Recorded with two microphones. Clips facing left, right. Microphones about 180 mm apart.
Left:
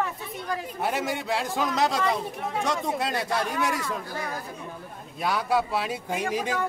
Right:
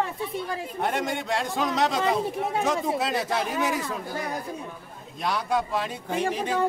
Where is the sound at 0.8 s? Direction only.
5° left (ahead or behind).